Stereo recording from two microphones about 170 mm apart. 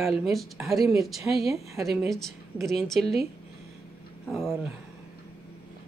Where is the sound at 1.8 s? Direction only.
Centre (ahead or behind).